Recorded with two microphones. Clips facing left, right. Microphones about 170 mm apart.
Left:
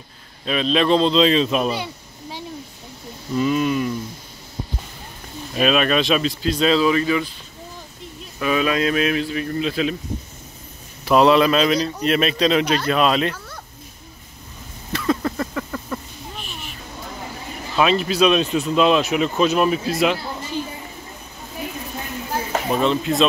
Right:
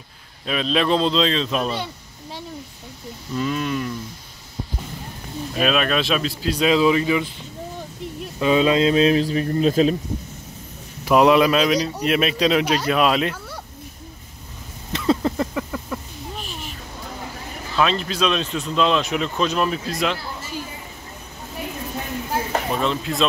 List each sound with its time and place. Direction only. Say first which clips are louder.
0.5 s speech: left 2 dB; centre (ahead or behind)
3.3 s speech: left 4 dB; 5° left (ahead or behind)
5.6 s speech: left 2 dB; centre (ahead or behind); by 7.2 s 15° right (ahead or behind)
8.4 s a man's voice: right 3 dB; 25° right (ahead or behind); by 9.9 s 40° right (ahead or behind)
11.1 s speech: even; 15° right (ahead or behind)
14.9 s a sound: right 1 dB; 20° right (ahead or behind)
15.9 s a sound: left 2 dB; 10° right (ahead or behind)
17.7 s speech: left 3 dB; 10° left (ahead or behind)
22.5 s speech: left 5 dB; 5° left (ahead or behind)